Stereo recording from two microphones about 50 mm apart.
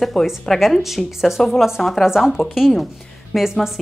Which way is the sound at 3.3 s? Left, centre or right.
Centre.